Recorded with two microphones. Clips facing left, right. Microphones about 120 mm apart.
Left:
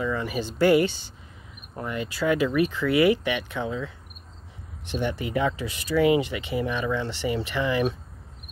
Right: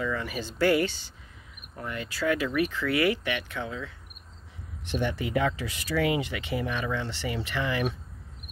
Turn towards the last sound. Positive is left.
turn(degrees=20)  # may be behind; listen again after turning